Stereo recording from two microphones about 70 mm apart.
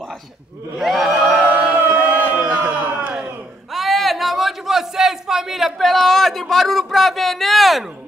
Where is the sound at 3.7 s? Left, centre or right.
Centre.